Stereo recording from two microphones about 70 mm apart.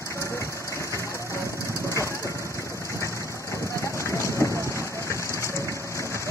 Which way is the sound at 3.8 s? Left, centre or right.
Left.